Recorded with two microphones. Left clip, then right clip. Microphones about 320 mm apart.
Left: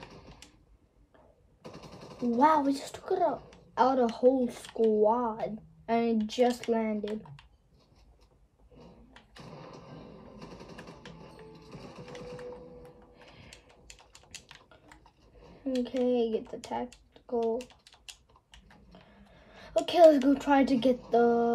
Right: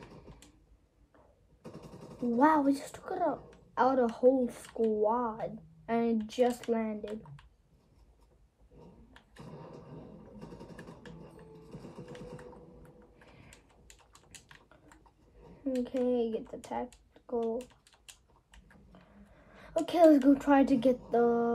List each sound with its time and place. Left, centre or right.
2.3 s a woman's voice: left
14.5 s a sound: left
15.6 s speech: left